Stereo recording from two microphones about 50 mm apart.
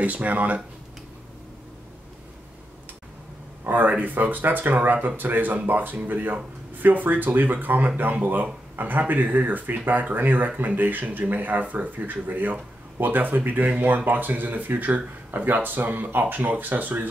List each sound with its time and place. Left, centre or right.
0.0 s speech: right
3.6 s speech: right